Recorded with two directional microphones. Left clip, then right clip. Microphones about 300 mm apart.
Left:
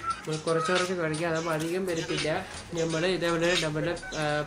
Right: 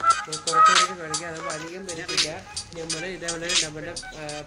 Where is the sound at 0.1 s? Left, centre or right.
Right.